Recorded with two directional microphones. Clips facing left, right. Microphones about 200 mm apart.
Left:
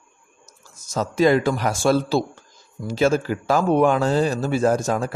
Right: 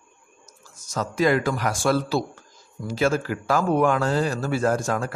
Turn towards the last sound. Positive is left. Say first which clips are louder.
# left 3 dB
turn(degrees=20)  # may be behind; listen again after turning